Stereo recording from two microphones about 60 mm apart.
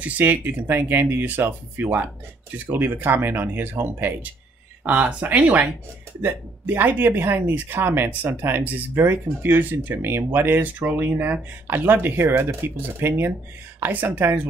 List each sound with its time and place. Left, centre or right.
0.0 s speech: right
2.8 s speech: right